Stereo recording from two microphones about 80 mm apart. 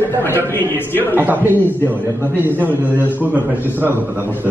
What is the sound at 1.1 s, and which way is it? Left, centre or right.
Speech, right.